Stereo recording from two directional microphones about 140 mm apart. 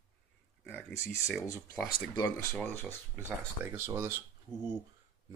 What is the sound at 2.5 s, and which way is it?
Speech, 10° left (ahead or behind).